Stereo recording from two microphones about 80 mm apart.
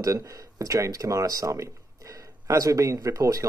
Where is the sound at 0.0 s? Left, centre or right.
Right.